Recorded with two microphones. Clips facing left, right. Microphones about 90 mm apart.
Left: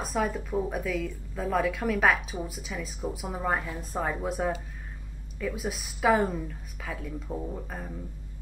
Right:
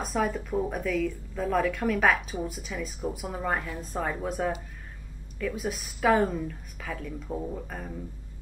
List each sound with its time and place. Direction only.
0.0 s a woman's voice: centre (ahead or behind)